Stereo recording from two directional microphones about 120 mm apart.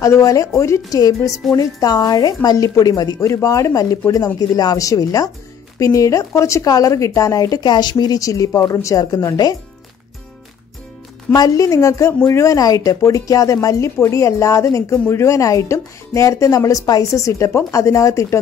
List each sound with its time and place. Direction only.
0.0 s a woman's voice: 25° left (ahead or behind)
11.3 s speech: 30° left (ahead or behind)